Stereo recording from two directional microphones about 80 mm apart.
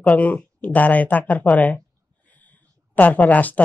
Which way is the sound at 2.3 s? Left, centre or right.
Centre.